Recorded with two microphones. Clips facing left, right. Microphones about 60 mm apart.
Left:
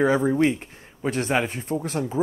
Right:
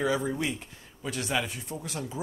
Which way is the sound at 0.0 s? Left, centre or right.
Left.